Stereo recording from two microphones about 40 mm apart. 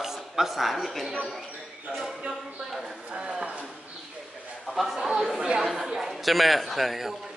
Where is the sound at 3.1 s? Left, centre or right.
Right.